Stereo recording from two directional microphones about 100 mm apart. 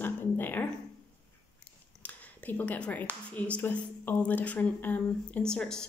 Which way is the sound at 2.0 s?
15° left (ahead or behind).